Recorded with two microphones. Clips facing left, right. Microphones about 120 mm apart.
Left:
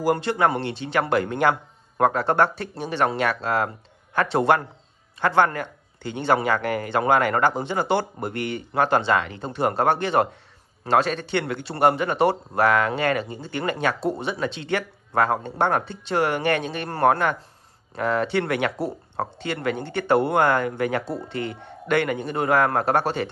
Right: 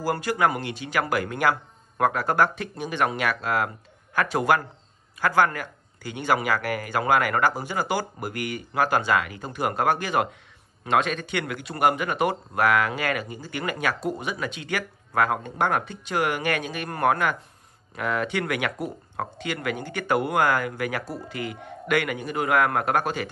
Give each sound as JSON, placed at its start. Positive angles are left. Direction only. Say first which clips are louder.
{"t": 0.0, "sound": "a man's voice", "louder": "left 3 dB", "side_deg": 25}